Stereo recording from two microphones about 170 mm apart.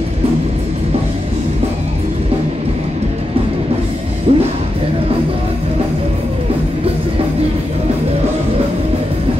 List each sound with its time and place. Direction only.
4.3 s speech: 35° right (ahead or behind)